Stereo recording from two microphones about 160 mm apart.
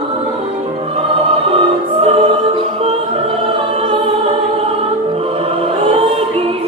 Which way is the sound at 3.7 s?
30° right (ahead or behind).